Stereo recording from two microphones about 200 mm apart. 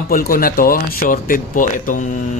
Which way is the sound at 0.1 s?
45° left (ahead or behind).